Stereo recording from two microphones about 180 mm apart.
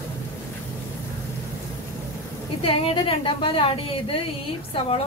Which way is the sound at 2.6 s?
30° left (ahead or behind).